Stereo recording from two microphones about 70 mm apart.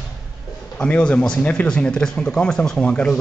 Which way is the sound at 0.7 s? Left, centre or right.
Centre.